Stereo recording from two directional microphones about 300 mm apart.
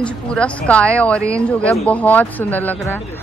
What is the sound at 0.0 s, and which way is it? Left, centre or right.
Speech, centre.